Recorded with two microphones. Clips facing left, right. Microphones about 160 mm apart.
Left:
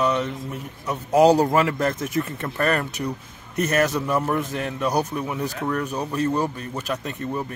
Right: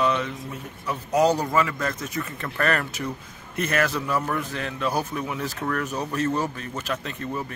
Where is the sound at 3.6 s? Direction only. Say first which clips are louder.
Left 3 dB; 40° left (ahead or behind).